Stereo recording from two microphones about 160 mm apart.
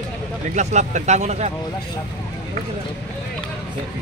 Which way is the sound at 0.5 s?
50° right (ahead or behind).